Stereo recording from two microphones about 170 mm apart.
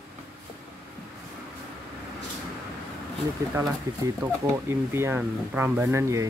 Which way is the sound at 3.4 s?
15° right (ahead or behind).